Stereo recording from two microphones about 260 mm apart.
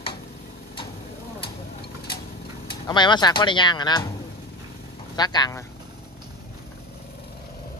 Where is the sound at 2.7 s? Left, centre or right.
Centre.